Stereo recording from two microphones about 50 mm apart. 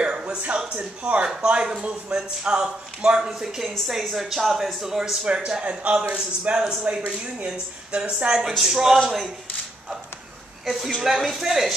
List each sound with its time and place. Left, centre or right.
0.0 s speech: centre
10.6 s speech: centre